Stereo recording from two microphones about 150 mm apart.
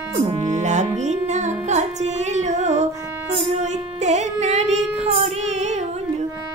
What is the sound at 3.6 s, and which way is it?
Child singing, 50° right (ahead or behind).